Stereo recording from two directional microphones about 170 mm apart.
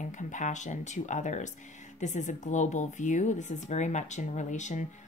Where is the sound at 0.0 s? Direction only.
45° left (ahead or behind).